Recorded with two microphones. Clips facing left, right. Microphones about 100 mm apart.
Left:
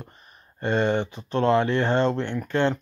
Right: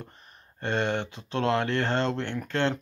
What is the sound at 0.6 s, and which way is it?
Speech, 5° left (ahead or behind).